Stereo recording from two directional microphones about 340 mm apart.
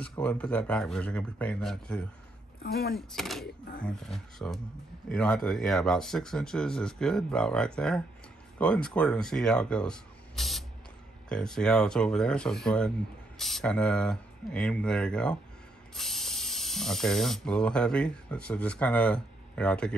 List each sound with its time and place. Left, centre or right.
0.0 s speech: centre
2.6 s speech: left
3.1 s speech: centre